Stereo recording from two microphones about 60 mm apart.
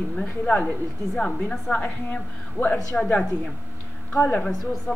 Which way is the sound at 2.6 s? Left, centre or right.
Left.